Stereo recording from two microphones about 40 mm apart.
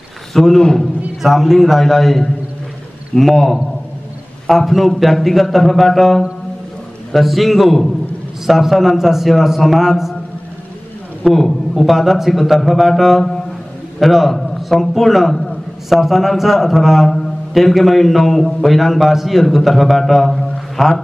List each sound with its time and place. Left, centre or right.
0.3 s a man's voice: centre
0.6 s a man's voice: centre
1.2 s a man's voice: centre
3.1 s a man's voice: centre
4.5 s a man's voice: centre
11.2 s a man's voice: centre